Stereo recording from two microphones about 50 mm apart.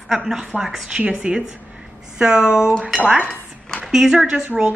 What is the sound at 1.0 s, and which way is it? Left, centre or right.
Speech, right.